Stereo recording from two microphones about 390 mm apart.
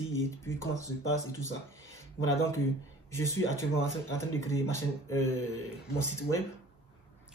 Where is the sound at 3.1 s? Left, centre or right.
Centre.